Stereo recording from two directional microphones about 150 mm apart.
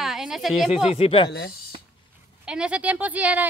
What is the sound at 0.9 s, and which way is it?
Speech, 40° left (ahead or behind).